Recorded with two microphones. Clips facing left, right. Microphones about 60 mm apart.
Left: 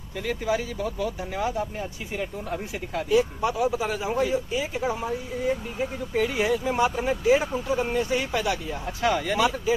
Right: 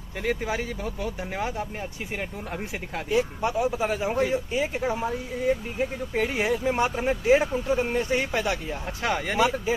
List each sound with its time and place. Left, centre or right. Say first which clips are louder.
0.2 s a man's voice: left 1 dB; right
2.1 s a man's voice: left 3 dB; right